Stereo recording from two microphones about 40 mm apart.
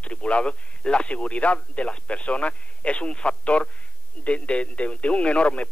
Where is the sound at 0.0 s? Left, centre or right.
Left.